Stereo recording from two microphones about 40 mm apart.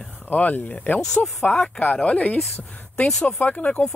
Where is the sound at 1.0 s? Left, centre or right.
Centre.